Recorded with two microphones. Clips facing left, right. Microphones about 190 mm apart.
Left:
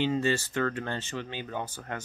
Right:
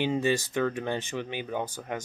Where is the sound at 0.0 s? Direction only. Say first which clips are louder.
Right 1 dB; 15° right (ahead or behind).